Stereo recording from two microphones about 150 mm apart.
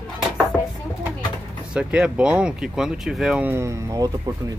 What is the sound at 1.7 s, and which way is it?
Speech, 5° right (ahead or behind).